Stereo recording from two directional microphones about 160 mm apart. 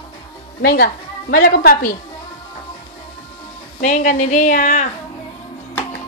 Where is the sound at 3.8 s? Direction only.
50° left (ahead or behind).